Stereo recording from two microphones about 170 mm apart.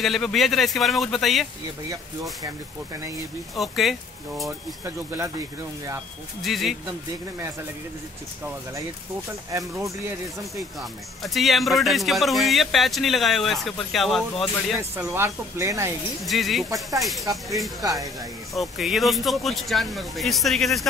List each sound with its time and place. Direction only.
0.0 s speech: centre (ahead or behind)
3.5 s speech: centre (ahead or behind)
4.8 s speech: 15° right (ahead or behind)
6.4 s speech: centre (ahead or behind)
9.5 s speech: 20° right (ahead or behind)
10.8 s speech: centre (ahead or behind)
15.0 s speech: 10° right (ahead or behind)
16.3 s speech: centre (ahead or behind)